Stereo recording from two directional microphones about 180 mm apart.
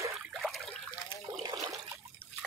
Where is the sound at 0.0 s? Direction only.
15° right (ahead or behind).